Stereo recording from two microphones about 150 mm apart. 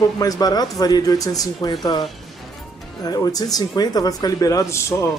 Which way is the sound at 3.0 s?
25° left (ahead or behind).